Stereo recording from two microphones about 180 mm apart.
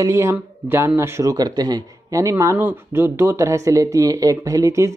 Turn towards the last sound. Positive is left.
turn(degrees=-15)  # may be behind; listen again after turning